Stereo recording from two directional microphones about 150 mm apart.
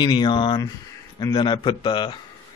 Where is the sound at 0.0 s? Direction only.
30° left (ahead or behind).